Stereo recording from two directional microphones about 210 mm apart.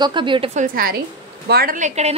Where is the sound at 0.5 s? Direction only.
45° right (ahead or behind).